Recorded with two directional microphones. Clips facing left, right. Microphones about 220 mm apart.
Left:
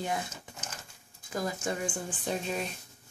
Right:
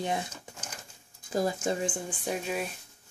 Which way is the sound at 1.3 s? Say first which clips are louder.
Right 4 dB; 30° right (ahead or behind).